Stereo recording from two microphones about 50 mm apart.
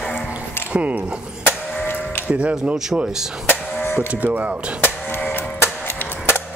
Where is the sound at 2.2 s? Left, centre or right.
Right.